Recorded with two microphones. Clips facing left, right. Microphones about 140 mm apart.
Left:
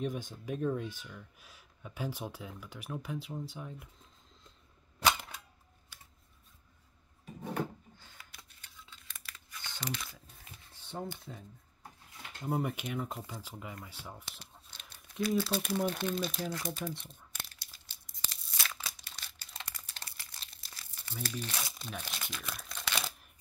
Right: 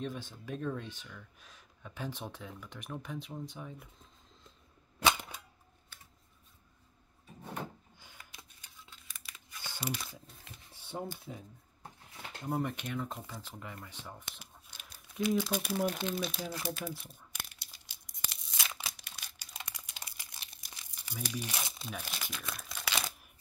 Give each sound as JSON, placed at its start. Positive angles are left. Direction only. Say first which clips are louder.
{"t": 0.0, "sound": "speech", "louder": "left 3 dB", "side_deg": 15}
{"t": 8.0, "sound": "a sound", "louder": "right 1 dB", "side_deg": -15}
{"t": 10.7, "sound": "speech", "louder": "even", "side_deg": -10}
{"t": 12.4, "sound": "speech", "louder": "left 1 dB", "side_deg": 5}
{"t": 14.4, "sound": "a sound", "louder": "even", "side_deg": -5}
{"t": 15.2, "sound": "speech", "louder": "even", "side_deg": -15}
{"t": 18.3, "sound": "crumpling", "louder": "left 1 dB", "side_deg": -20}
{"t": 21.7, "sound": "crumpling", "louder": "even", "side_deg": -5}